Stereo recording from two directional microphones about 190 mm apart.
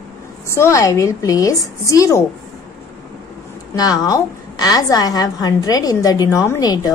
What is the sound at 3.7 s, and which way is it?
A woman's voice, 20° left (ahead or behind).